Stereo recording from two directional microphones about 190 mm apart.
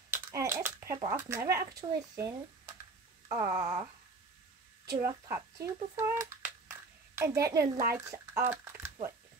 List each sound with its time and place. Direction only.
0.1 s speech: 15° right (ahead or behind)
3.3 s a sound: 15° right (ahead or behind)
4.8 s speech: 15° right (ahead or behind)